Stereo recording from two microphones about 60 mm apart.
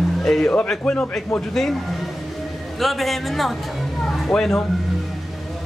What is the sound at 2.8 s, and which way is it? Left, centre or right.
Speech, centre.